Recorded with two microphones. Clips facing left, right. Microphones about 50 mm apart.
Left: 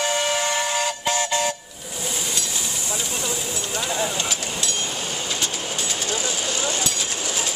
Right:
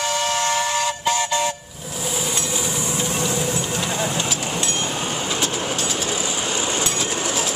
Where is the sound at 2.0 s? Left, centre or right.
Centre.